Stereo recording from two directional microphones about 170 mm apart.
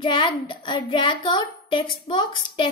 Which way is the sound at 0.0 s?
30° left (ahead or behind).